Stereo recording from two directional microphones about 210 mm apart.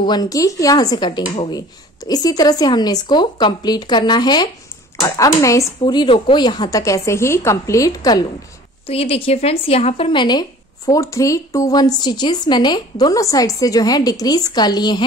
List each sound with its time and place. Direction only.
0.0 s a woman's voice: 20° left (ahead or behind)
8.8 s a woman's voice: 30° left (ahead or behind)